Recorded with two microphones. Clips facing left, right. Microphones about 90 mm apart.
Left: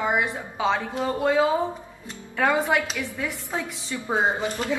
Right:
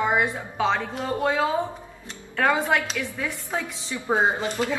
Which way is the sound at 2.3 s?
5° left (ahead or behind).